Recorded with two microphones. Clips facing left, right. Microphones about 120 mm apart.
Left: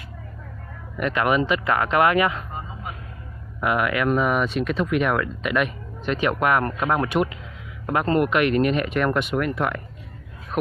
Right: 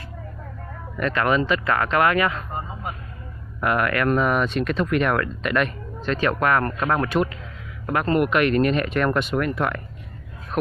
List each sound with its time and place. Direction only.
0.9 s speech: 15° left (ahead or behind)
3.6 s speech: 5° left (ahead or behind)
6.0 s speech: 15° left (ahead or behind)